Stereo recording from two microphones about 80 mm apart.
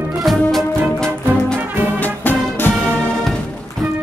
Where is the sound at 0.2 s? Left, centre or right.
Centre.